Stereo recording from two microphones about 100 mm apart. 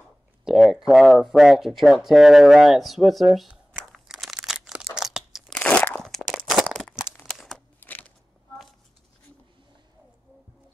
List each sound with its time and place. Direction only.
0.5 s speech: 5° right (ahead or behind)
3.3 s crumpling: centre (ahead or behind)
4.9 s crunch: 5° right (ahead or behind)
5.5 s crunch: 15° left (ahead or behind)
6.2 s a sound: centre (ahead or behind)
7.5 s a sound: 15° left (ahead or behind)